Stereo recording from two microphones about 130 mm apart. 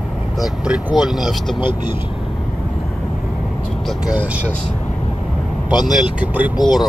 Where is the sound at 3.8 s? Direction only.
10° right (ahead or behind).